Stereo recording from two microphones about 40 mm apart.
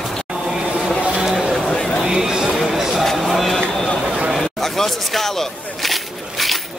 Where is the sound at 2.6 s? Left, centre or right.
Centre.